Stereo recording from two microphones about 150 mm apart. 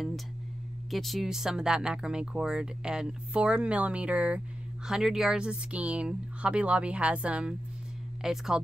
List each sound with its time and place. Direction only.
0.8 s speech: centre (ahead or behind)